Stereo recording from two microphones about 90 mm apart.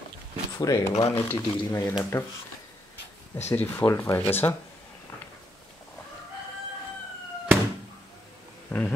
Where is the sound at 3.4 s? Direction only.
25° left (ahead or behind).